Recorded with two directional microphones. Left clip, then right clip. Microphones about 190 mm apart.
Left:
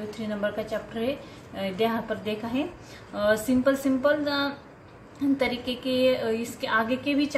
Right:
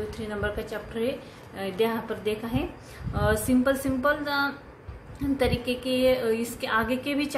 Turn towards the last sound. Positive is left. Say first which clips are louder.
# left 2 dB
turn(degrees=-20)  # may be behind; listen again after turning